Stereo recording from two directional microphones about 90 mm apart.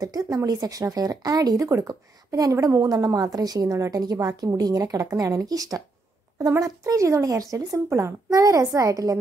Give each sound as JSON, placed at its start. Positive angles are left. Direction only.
{"t": 0.0, "sound": "speech", "side_deg": -45}